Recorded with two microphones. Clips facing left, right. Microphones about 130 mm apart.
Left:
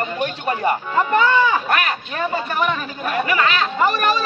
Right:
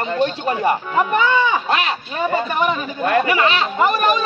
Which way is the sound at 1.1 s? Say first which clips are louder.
Left 2 dB; 20° right (ahead or behind).